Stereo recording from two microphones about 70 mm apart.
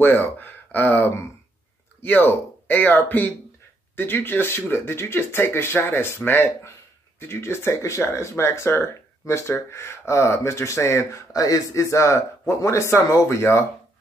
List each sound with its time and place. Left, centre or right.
0.0 s speech: left